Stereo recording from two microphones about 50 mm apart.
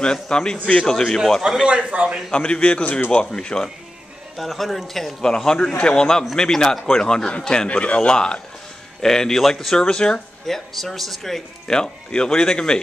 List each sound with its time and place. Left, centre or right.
0.0 s speech: centre
1.4 s a man's voice: centre
1.7 s a man's voice: right
2.3 s a man's voice: left
3.1 s speech: centre
4.4 s a man's voice: centre
5.8 s a man's voice: centre
9.8 s speech: centre
10.4 s speech: centre